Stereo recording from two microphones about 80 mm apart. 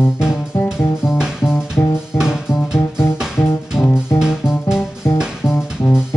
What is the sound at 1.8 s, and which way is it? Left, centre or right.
Music, left.